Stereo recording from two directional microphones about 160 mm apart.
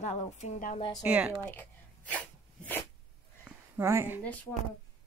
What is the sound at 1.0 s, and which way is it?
Speech, 5° right (ahead or behind).